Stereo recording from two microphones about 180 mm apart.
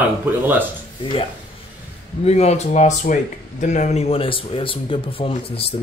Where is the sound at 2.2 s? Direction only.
35° left (ahead or behind).